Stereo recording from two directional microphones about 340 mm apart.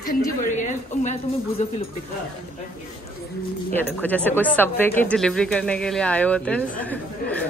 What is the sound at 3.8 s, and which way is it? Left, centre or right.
Speech, centre.